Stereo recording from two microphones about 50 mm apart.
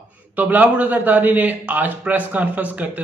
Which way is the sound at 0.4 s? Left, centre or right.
Right.